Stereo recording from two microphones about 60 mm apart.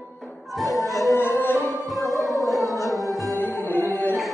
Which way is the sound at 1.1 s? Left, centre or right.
Left.